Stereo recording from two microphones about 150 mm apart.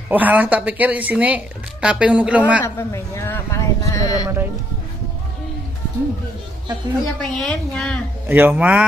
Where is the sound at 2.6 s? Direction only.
20° left (ahead or behind).